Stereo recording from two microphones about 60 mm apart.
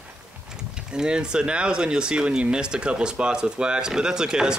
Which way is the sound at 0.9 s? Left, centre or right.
Centre.